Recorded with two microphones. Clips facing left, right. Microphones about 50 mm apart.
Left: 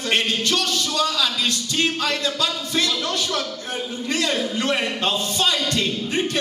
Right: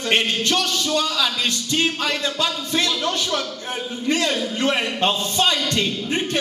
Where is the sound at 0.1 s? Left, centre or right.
Right.